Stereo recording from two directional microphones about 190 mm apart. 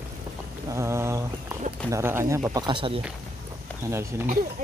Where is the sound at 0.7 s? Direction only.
15° right (ahead or behind).